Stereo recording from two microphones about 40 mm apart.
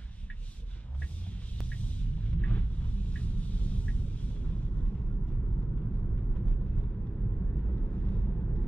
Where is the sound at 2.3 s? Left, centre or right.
Left.